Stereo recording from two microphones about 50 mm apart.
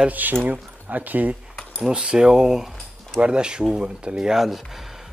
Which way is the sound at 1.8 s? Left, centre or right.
Centre.